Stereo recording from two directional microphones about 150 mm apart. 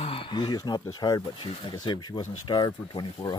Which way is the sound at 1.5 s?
30° left (ahead or behind).